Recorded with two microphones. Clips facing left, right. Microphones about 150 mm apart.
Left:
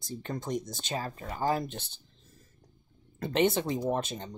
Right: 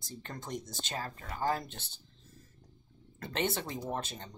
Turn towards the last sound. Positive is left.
turn(degrees=15)  # may be behind; listen again after turning